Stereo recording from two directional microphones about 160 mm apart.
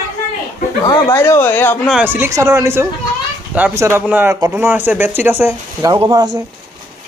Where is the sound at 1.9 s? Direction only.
10° right (ahead or behind).